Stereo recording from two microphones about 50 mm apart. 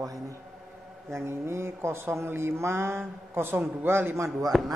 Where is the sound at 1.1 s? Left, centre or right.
Right.